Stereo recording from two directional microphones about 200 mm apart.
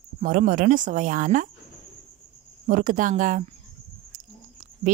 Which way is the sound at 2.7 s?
40° right (ahead or behind).